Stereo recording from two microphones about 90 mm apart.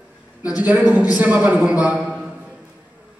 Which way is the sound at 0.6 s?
15° right (ahead or behind).